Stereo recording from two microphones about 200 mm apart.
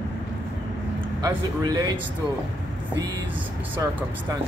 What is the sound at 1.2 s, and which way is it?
Speech, 20° right (ahead or behind).